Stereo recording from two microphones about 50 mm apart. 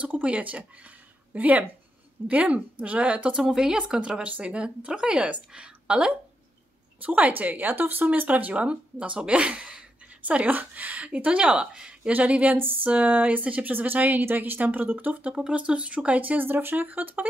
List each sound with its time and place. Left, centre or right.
0.0 s speech: right
3.4 s speech: centre
7.0 s speech: right
10.4 s speech: right; by 12.1 s centre
12.1 s speech: right
12.5 s speech: right
12.9 s speech: right
15.3 s speech: right